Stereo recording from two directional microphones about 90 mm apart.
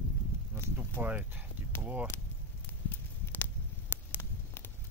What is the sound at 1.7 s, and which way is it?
Speech, 25° left (ahead or behind).